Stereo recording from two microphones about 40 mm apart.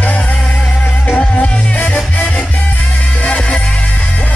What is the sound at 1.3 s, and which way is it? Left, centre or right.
Music, left.